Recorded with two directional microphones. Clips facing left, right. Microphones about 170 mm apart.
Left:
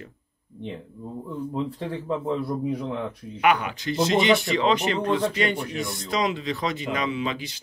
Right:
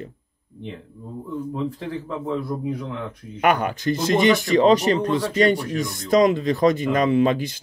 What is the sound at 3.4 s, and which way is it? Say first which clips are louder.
Speech: right 3 dB; 45° right (ahead or behind).